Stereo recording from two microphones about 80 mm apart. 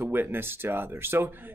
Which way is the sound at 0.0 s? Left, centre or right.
Right.